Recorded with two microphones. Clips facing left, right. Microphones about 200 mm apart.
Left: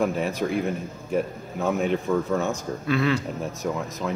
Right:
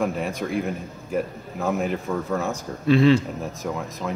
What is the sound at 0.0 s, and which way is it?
Speech, centre (ahead or behind).